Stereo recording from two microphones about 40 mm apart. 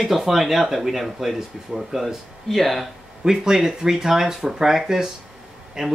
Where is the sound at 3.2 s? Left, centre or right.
Centre.